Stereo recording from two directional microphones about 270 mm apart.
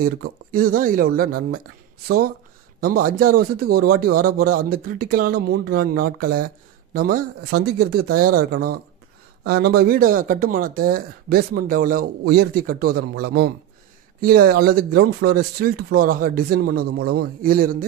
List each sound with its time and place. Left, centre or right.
0.2 s a man's voice: right
14.2 s a man's voice: right